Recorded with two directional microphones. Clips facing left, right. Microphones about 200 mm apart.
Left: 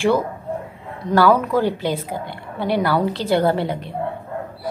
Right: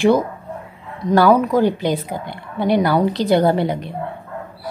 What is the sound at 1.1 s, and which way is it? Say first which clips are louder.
Speech: right 2 dB; 20° right (ahead or behind).